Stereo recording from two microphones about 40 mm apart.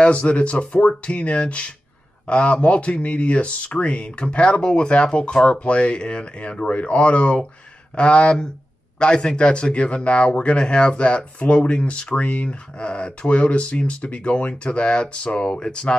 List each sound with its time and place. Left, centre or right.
0.0 s speech: left